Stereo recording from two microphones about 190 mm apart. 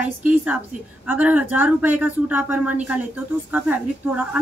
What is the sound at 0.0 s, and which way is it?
Speech, 10° right (ahead or behind).